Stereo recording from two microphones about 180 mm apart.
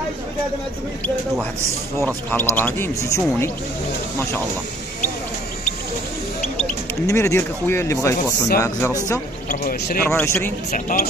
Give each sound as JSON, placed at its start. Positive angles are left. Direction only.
{"t": 2.0, "sound": "speech", "side_deg": 10}
{"t": 7.1, "sound": "speech", "side_deg": 15}
{"t": 10.7, "sound": "speech", "side_deg": 50}